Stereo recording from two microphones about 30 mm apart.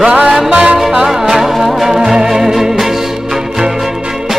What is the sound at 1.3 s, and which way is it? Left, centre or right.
Music, centre.